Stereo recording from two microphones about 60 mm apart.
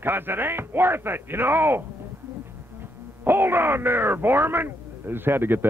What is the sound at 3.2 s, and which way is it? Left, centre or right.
Speech, right.